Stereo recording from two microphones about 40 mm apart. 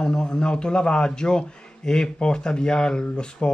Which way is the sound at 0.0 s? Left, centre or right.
Centre.